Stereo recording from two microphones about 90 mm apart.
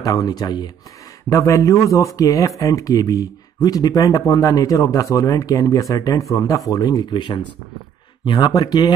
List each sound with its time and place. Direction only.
0.0 s speech: 45° left (ahead or behind)
1.3 s a man's voice: 35° left (ahead or behind)
6.7 s speech: 45° left (ahead or behind)